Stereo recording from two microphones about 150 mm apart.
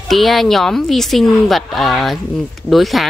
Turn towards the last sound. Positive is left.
turn(degrees=0)  # may be behind; listen again after turning